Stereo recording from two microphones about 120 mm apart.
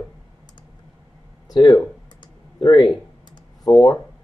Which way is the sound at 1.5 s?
35° left (ahead or behind).